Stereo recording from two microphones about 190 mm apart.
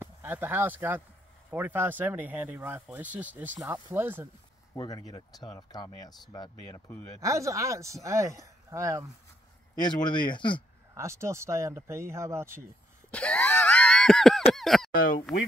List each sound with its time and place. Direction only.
0.0 s speech: 10° right (ahead or behind)
4.7 s speech: 20° left (ahead or behind)
7.2 s speech: 15° right (ahead or behind)
9.8 s speech: 25° left (ahead or behind)
11.0 s speech: 15° right (ahead or behind)
13.1 s wail: 5° left (ahead or behind)
14.5 s speech: centre (ahead or behind)
14.9 s speech: 50° left (ahead or behind)